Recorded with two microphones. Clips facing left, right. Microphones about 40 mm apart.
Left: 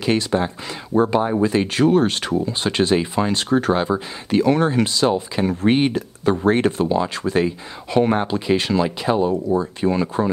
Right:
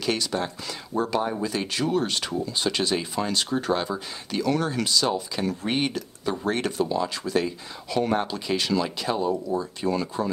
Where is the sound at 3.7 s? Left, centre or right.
Left.